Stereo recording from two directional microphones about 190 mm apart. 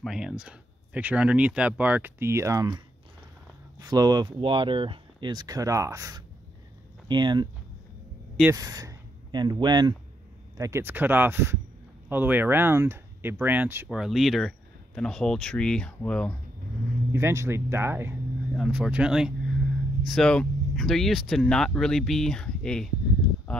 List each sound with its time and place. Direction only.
0.0 s speech: centre (ahead or behind); by 2.8 s 20° right (ahead or behind)
3.8 s speech: 20° right (ahead or behind)
8.5 s speech: 20° right (ahead or behind); by 16.3 s 5° left (ahead or behind)
17.1 s speech: 15° right (ahead or behind); by 22.8 s 5° left (ahead or behind)
23.5 s a sound: 5° left (ahead or behind)